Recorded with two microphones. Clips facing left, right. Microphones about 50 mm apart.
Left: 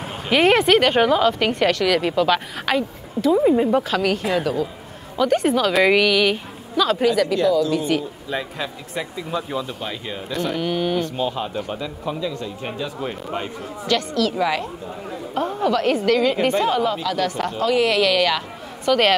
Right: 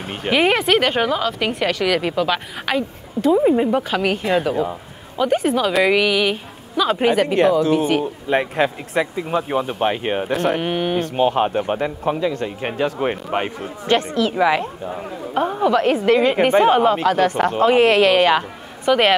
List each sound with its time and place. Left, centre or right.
0.3 s a woman's voice: centre
5.4 s a woman's voice: centre
7.0 s a woman's voice: right
8.0 s a man's voice: right
10.6 s a woman's voice: right
11.0 s a man's voice: right
13.8 s a woman's voice: right
18.9 s speech: centre